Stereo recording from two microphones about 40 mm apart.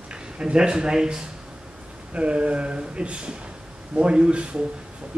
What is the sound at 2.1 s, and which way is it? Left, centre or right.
Speech, right.